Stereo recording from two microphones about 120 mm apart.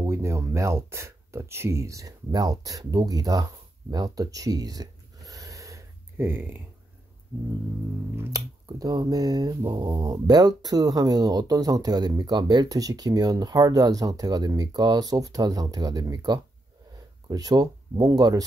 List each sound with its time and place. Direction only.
0.0 s speech: 25° right (ahead or behind)
3.9 s a sound: 30° right (ahead or behind); by 6.6 s 15° right (ahead or behind)
8.2 s speech: 30° right (ahead or behind)